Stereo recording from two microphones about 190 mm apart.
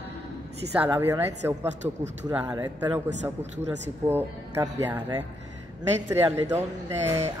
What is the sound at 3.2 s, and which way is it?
Speech, 35° right (ahead or behind).